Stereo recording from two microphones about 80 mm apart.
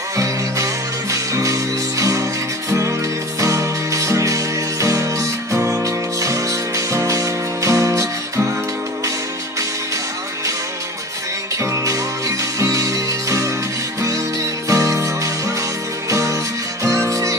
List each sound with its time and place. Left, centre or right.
1.1 s music: right
11.6 s music: right